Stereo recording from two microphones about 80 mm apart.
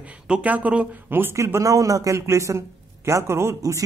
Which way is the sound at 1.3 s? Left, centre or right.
Right.